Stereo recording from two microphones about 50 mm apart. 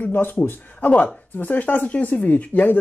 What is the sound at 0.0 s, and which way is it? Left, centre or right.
A woman's voice, left.